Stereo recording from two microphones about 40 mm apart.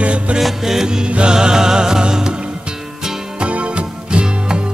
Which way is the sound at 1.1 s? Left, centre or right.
Right.